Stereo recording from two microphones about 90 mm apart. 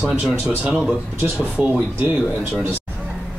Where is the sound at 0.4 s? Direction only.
20° right (ahead or behind).